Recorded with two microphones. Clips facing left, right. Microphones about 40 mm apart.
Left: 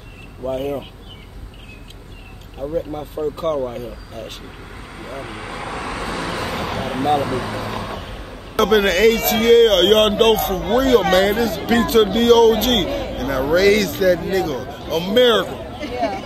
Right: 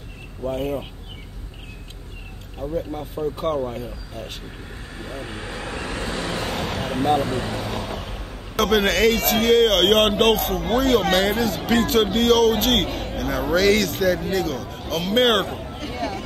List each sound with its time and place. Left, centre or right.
0.4 s a man's voice: centre
2.6 s a man's voice: centre
4.9 s speech: left
5.7 s vehicle: left
6.5 s speech: centre
7.2 s speech: left
7.7 s a man's voice: centre
15.4 s a sound: centre
15.8 s chatter: left